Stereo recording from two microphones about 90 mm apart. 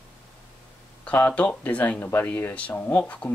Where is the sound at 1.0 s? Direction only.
15° left (ahead or behind).